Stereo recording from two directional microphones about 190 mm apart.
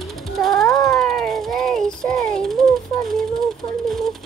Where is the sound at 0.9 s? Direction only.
Centre (ahead or behind).